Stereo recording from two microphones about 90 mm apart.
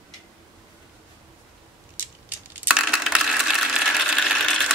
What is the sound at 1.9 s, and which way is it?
Scissors, 20° right (ahead or behind).